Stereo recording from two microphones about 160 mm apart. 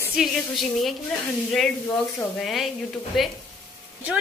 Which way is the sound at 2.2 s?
Centre (ahead or behind).